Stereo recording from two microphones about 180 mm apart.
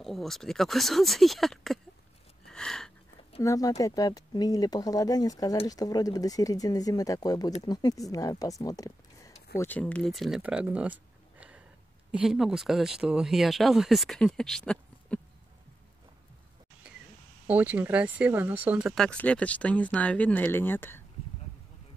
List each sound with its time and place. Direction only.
0.0 s speech: centre (ahead or behind)
2.4 s a sound: 5° left (ahead or behind)
3.4 s speech: 20° left (ahead or behind); by 15.1 s 5° left (ahead or behind)
17.5 s speech: 10° right (ahead or behind)
19.0 s speech: 5° left (ahead or behind)